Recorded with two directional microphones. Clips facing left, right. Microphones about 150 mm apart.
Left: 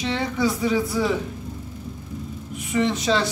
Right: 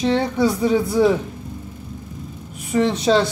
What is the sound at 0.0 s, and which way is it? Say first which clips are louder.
Speech: right 5 dB; 35° right (ahead or behind).